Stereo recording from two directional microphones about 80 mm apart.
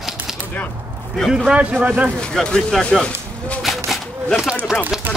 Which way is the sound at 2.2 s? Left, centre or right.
Centre.